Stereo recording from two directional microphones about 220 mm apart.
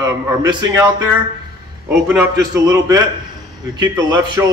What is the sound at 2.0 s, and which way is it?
Speech, 5° right (ahead or behind).